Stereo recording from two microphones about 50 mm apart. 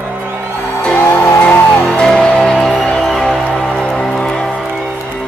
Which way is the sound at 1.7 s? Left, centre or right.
Left.